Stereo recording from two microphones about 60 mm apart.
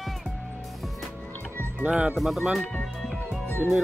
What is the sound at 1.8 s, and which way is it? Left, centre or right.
Speech, centre.